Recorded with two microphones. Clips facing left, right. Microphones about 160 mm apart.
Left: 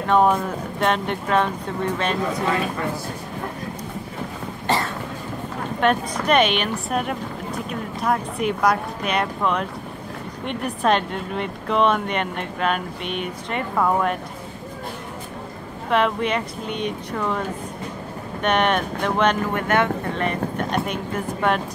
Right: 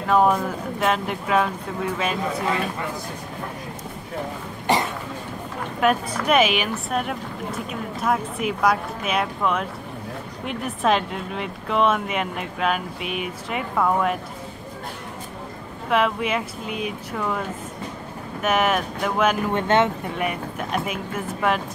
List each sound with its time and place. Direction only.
0.0 s a woman's voice: centre (ahead or behind)
4.6 s cough: 15° right (ahead or behind)
5.8 s a woman's voice: 5° right (ahead or behind)
15.9 s a woman's voice: 5° right (ahead or behind)
18.4 s a woman's voice: 5° right (ahead or behind)
19.5 s speech: 25° right (ahead or behind)
20.2 s a woman's voice: 5° right (ahead or behind)